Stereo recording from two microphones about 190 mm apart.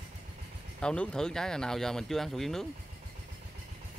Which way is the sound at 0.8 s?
5° left (ahead or behind).